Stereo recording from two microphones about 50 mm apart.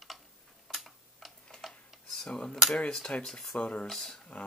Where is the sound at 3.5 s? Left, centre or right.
Left.